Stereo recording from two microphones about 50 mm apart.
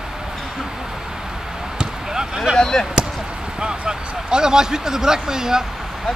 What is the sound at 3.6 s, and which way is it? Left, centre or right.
Speech, centre.